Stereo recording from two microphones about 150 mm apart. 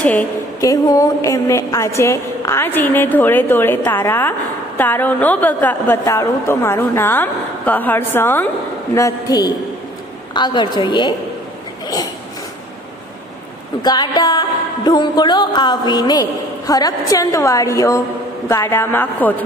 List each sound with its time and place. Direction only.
0.0 s a woman's voice: 10° left (ahead or behind)
0.6 s a woman's voice: 20° left (ahead or behind)
13.8 s a woman's voice: 25° left (ahead or behind)